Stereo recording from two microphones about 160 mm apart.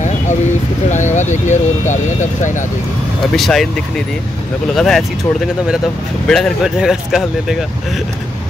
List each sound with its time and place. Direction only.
0.8 s speech: 50° left (ahead or behind)
3.3 s speech: centre (ahead or behind)
6.2 s speech: 5° left (ahead or behind)